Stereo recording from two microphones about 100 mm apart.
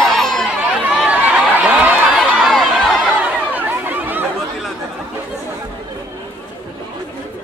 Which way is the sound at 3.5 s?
20° right (ahead or behind).